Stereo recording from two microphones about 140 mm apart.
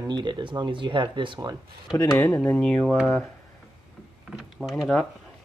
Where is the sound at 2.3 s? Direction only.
10° left (ahead or behind).